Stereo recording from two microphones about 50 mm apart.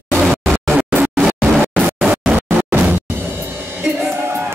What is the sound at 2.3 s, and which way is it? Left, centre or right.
Music, right.